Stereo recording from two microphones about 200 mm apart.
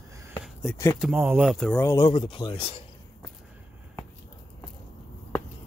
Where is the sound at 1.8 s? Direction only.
15° left (ahead or behind).